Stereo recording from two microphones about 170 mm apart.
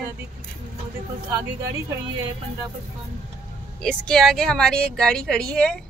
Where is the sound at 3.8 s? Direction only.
5° left (ahead or behind).